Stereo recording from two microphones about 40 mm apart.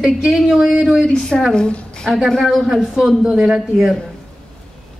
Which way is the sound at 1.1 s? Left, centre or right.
Centre.